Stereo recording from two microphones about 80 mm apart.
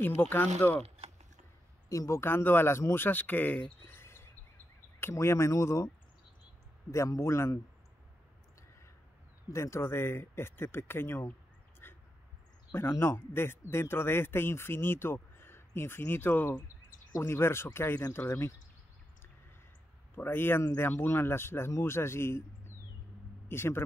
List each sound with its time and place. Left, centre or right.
0.0 s speech: left
1.9 s speech: left
6.9 s speech: left
9.5 s speech: left
11.8 s a sound: left
12.7 s speech: left
20.2 s speech: left